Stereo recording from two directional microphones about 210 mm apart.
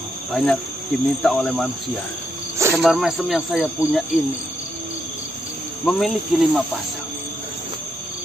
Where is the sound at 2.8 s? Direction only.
Centre (ahead or behind).